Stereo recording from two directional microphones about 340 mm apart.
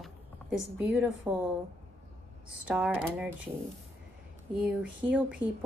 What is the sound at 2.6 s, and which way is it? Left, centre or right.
Speech, centre.